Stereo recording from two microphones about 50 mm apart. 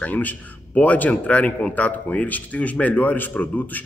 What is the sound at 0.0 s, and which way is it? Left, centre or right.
Speech, left.